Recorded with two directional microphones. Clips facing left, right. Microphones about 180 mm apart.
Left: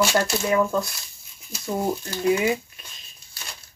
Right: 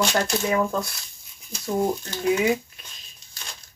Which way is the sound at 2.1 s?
10° left (ahead or behind).